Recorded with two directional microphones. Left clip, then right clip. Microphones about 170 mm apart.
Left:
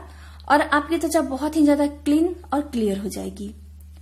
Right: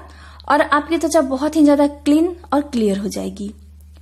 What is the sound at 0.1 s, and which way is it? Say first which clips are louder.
A woman's voice: right 2 dB; 30° right (ahead or behind).